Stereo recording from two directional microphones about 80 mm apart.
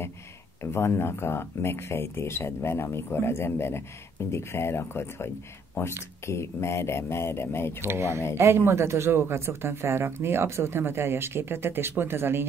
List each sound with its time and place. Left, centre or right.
0.6 s speech: left
7.8 s speech: right